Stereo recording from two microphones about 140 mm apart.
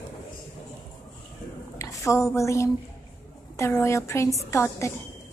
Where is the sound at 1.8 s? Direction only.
20° left (ahead or behind).